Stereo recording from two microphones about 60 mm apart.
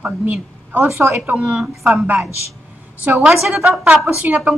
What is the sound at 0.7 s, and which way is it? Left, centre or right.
Speech, right.